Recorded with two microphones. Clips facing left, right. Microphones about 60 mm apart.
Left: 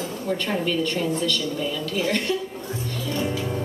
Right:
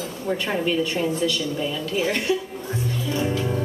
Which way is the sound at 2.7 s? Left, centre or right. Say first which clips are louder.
Right 4 dB; centre.